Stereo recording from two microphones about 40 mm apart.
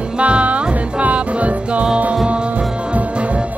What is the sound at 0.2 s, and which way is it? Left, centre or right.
Music, right.